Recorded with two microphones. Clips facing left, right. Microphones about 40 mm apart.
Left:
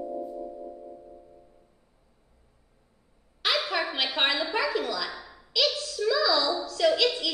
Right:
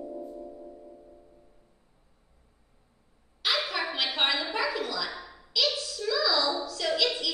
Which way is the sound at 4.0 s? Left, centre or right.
Left.